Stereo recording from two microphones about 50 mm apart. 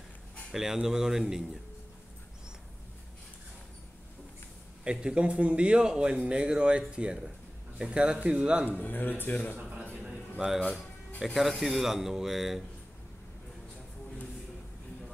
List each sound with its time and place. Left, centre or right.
0.5 s a man's voice: centre
5.0 s speech: right
8.6 s speech: left
9.6 s a sound: right
10.4 s a man's voice: centre